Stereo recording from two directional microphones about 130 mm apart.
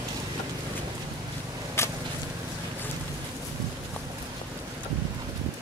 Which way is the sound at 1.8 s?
20° left (ahead or behind).